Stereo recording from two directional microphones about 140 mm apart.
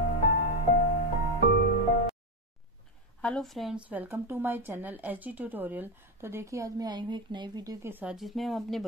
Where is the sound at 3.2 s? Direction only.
5° left (ahead or behind).